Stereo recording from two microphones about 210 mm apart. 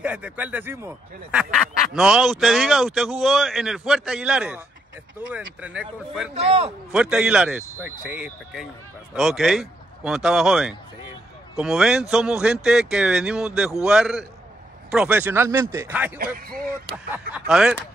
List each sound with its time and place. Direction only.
0.0 s speech: 5° right (ahead or behind)
6.3 s a man's voice: 30° right (ahead or behind)
6.9 s speech: 5° right (ahead or behind)
16.3 s speech: 45° right (ahead or behind)
17.3 s speech: 5° right (ahead or behind)